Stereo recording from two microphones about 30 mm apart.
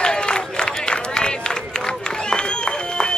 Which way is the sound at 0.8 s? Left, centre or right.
Left.